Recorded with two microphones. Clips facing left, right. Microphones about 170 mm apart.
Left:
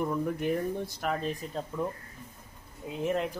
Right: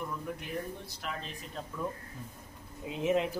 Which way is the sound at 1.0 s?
50° left (ahead or behind).